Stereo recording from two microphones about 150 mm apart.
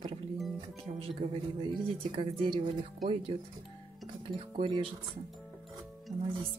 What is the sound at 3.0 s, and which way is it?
Speech, centre (ahead or behind).